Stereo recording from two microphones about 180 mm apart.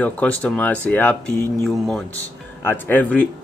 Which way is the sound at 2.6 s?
10° left (ahead or behind).